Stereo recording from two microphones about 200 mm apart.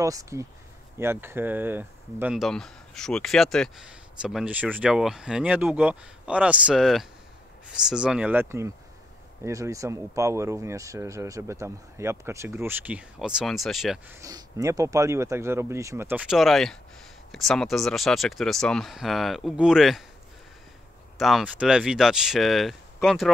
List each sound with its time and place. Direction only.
0.0 s speech: 15° right (ahead or behind); by 14.1 s centre (ahead or behind)
14.2 s speech: 15° right (ahead or behind)
21.2 s speech: centre (ahead or behind)